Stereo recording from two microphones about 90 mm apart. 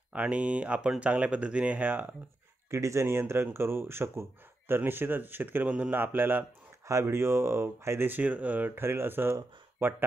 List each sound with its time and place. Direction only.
0.1 s speech: 15° right (ahead or behind)
2.7 s speech: 30° right (ahead or behind)